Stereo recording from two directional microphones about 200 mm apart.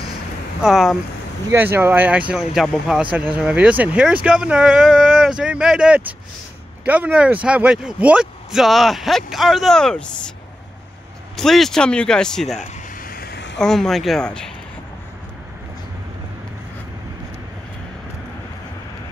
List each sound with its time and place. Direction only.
0.6 s speech: centre (ahead or behind)
11.3 s speech: centre (ahead or behind)
13.0 s vehicle: 50° left (ahead or behind)
13.6 s speech: centre (ahead or behind)